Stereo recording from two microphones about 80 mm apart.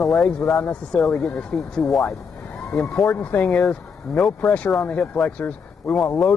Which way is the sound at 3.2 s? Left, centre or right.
Left.